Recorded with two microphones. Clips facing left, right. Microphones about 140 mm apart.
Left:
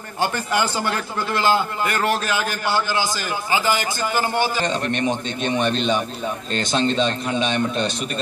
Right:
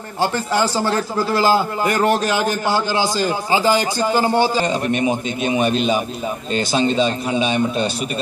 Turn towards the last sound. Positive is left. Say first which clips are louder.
# right 3 dB
turn(degrees=-5)  # may be behind; listen again after turning